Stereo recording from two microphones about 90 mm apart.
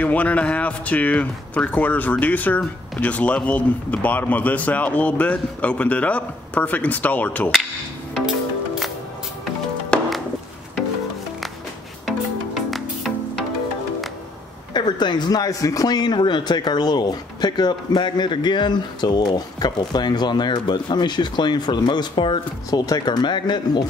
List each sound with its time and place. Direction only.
0.0 s speech: 15° left (ahead or behind)
8.1 s music: centre (ahead or behind)
9.9 s music: 15° left (ahead or behind)
12.1 s music: centre (ahead or behind)
14.7 s speech: 55° left (ahead or behind)
22.7 s speech: 45° left (ahead or behind)